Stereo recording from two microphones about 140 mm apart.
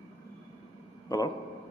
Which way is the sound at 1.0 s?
25° left (ahead or behind).